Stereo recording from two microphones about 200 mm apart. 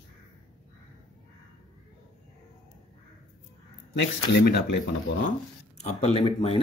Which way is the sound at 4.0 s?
60° left (ahead or behind).